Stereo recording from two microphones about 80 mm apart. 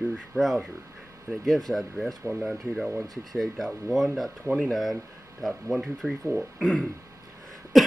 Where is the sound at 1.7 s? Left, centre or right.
Centre.